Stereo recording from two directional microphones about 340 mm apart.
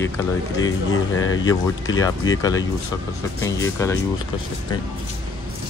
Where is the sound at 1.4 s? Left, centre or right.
Centre.